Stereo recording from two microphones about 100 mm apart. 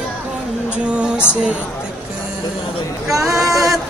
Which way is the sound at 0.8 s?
10° right (ahead or behind).